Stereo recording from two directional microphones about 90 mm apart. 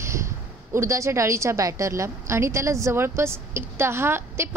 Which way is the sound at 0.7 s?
30° right (ahead or behind).